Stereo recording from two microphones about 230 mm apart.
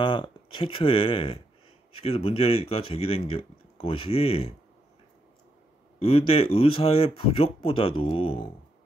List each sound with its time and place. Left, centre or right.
0.0 s speech: left
5.9 s speech: left